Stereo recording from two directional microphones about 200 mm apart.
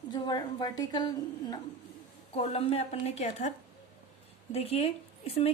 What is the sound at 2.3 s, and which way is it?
A woman's voice, 30° left (ahead or behind).